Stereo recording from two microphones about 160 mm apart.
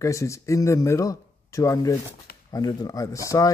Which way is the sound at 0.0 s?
20° left (ahead or behind).